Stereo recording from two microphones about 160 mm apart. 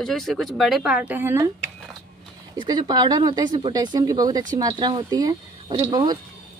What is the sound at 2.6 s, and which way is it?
Speech, 25° right (ahead or behind).